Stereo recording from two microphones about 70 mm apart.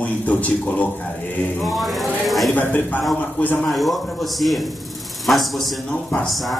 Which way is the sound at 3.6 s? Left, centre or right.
Centre.